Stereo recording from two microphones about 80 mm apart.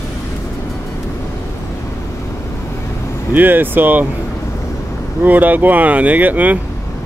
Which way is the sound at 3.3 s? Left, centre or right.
Right.